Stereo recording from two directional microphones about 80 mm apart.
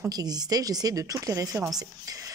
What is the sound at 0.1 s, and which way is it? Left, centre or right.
Speech, right.